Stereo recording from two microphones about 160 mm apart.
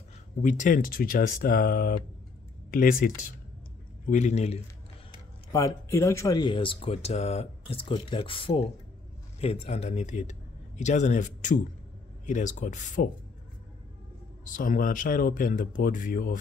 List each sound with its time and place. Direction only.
0.4 s speech: 50° left (ahead or behind)
4.0 s speech: 50° left (ahead or behind)
5.5 s speech: 20° left (ahead or behind); by 13.1 s 50° left (ahead or behind)
14.4 s speech: 55° left (ahead or behind)